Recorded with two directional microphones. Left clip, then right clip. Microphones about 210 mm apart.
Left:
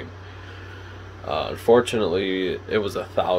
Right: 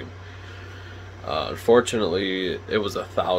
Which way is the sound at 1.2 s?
10° right (ahead or behind).